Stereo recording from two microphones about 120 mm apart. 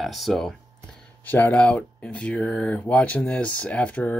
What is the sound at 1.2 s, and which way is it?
Speech, 15° left (ahead or behind).